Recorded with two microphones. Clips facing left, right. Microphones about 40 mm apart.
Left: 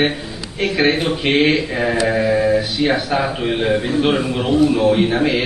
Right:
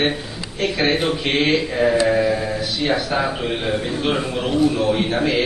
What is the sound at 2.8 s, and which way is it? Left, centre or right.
Speech, left.